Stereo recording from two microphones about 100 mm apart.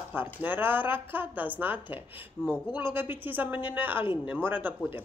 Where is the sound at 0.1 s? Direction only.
20° right (ahead or behind).